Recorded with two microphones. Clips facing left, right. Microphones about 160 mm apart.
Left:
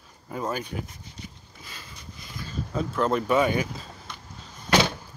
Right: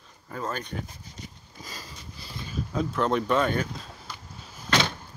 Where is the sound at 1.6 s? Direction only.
40° right (ahead or behind).